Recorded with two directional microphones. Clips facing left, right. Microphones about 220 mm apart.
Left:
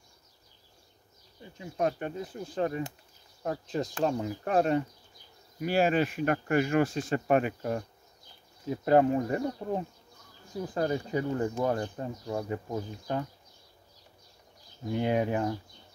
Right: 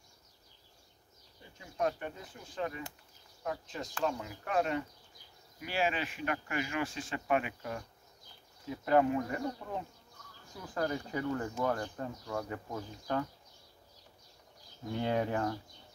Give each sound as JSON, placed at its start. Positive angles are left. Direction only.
{"t": 1.6, "sound": "speech", "side_deg": 25}
{"t": 2.3, "sound": "speech", "side_deg": 40}
{"t": 10.6, "sound": "speech", "side_deg": 25}
{"t": 14.9, "sound": "speech", "side_deg": 15}